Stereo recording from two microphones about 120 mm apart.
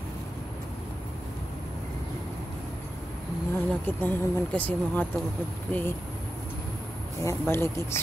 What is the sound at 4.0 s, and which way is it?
Speech, 15° left (ahead or behind).